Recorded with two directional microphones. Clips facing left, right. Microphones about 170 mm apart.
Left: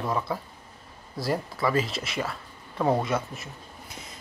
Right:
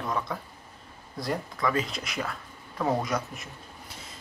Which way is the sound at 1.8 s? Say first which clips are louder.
Left 3 dB; 30° left (ahead or behind).